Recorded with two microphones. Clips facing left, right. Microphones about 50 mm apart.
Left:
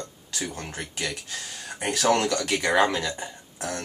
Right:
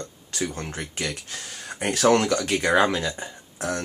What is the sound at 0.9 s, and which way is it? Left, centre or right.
Speech, right.